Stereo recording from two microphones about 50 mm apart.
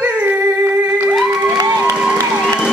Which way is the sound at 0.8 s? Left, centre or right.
Right.